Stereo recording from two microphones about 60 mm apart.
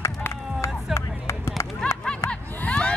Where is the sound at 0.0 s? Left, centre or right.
Left.